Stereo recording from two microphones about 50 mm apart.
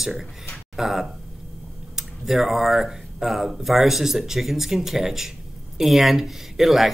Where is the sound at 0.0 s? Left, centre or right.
Centre.